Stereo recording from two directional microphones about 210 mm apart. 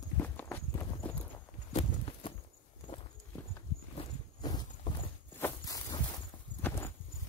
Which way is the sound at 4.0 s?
20° left (ahead or behind).